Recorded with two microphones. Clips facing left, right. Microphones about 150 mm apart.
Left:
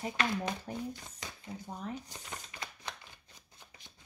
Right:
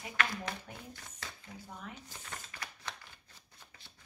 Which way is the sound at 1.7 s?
35° left (ahead or behind).